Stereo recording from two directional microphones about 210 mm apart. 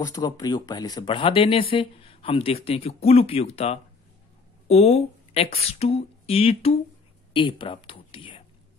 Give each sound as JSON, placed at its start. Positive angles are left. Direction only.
{"t": 0.0, "sound": "speech", "side_deg": 15}